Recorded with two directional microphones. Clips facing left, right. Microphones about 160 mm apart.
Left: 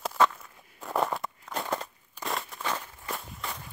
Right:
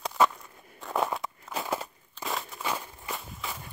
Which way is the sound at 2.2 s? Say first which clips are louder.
Even; centre (ahead or behind).